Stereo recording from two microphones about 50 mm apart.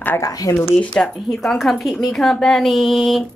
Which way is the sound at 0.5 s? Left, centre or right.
Left.